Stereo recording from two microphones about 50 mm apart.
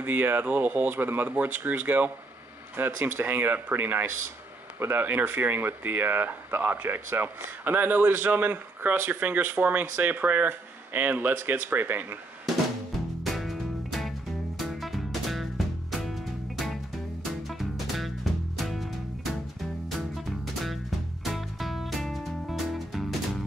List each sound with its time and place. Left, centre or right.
0.0 s speech: right
4.7 s speech: right
5.0 s speech: right
13.2 s music: centre
21.2 s music: centre